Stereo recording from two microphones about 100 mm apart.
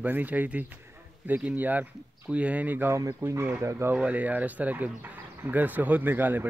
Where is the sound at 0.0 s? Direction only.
15° right (ahead or behind).